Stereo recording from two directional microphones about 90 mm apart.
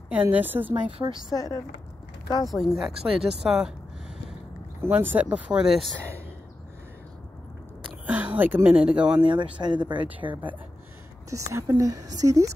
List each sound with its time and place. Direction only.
0.1 s a woman's voice: 20° right (ahead or behind)
0.8 s speech: 65° right (ahead or behind)
1.3 s speech: 40° left (ahead or behind)
2.5 s speech: centre (ahead or behind)
4.8 s speech: 20° right (ahead or behind); by 5.9 s 5° right (ahead or behind)
8.1 s speech: 15° right (ahead or behind)
9.2 s speech: 65° right (ahead or behind)
11.2 s a woman's voice: 35° right (ahead or behind)